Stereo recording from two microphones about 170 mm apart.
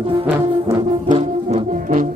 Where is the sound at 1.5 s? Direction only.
45° right (ahead or behind).